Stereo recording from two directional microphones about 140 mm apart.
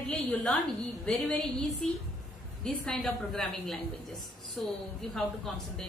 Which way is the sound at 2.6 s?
5° left (ahead or behind).